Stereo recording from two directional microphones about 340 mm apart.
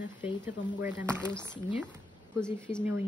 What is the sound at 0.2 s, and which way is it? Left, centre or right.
A woman's voice, centre.